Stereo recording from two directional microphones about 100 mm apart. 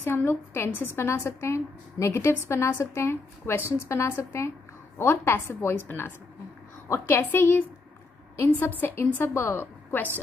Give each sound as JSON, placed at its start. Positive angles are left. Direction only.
{"t": 0.0, "sound": "a woman's voice", "side_deg": 20}
{"t": 8.5, "sound": "a woman's voice", "side_deg": 20}